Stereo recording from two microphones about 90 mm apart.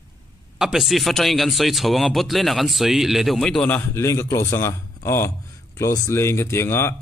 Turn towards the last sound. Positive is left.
turn(degrees=30)  # may be behind; listen again after turning